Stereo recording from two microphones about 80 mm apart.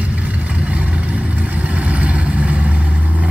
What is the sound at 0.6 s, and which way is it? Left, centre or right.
Vehicle, centre.